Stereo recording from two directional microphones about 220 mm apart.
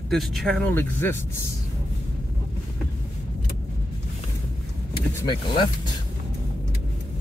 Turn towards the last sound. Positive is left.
turn(degrees=20)  # may be behind; listen again after turning